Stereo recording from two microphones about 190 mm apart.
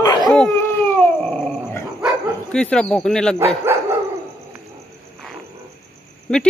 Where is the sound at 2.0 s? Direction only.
5° left (ahead or behind).